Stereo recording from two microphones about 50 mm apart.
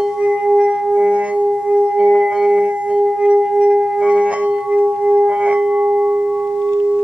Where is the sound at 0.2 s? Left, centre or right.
Right.